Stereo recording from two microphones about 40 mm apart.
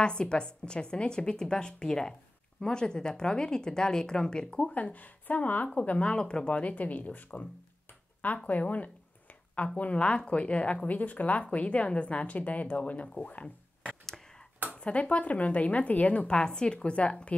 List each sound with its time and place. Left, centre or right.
0.0 s a woman's voice: left
4.7 s a woman's voice: left
5.8 s a woman's voice: left
6.5 s speech: left
8.5 s a woman's voice: left
13.8 s a sound: centre
14.8 s a woman's voice: left
16.3 s a woman's voice: left